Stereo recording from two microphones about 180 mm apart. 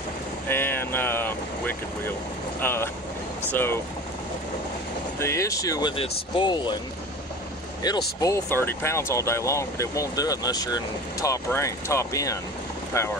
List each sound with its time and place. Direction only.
0.5 s vehicle: 10° left (ahead or behind)
2.6 s speech: 15° left (ahead or behind)
5.2 s speech: 15° left (ahead or behind)
8.2 s speech: 15° left (ahead or behind)